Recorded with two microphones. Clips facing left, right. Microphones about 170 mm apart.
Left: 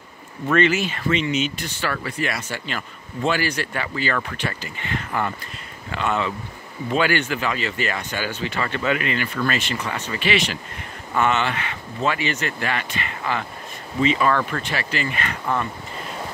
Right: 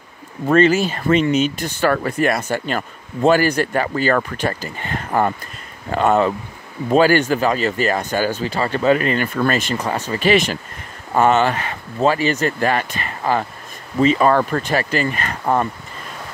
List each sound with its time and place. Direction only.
0.5 s speech: 35° right (ahead or behind)